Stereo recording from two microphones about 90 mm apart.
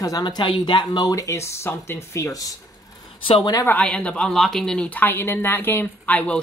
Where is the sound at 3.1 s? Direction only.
75° left (ahead or behind).